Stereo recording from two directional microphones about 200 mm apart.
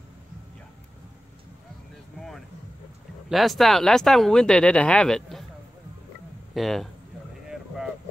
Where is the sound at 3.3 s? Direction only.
Centre (ahead or behind).